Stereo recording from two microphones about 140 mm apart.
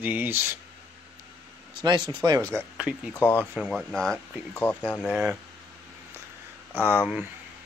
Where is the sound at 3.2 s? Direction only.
10° left (ahead or behind).